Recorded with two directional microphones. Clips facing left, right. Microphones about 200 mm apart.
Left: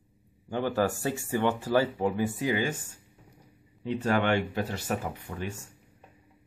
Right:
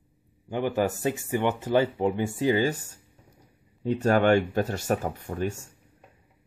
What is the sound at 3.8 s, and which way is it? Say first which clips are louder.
Speech: right 5 dB; 45° right (ahead or behind).